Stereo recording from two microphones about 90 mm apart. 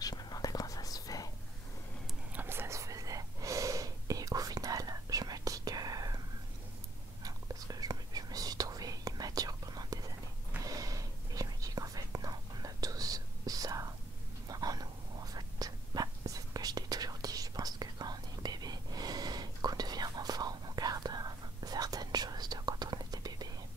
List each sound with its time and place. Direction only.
0.0 s whispering: 45° left (ahead or behind)
2.3 s whispering: 25° right (ahead or behind); by 6.2 s 45° right (ahead or behind)
7.2 s whispering: 45° right (ahead or behind)
14.5 s a sound: 45° right (ahead or behind)
15.3 s whispering: 45° right (ahead or behind)